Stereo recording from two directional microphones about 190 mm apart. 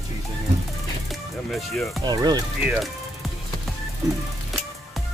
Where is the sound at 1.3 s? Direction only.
Centre (ahead or behind).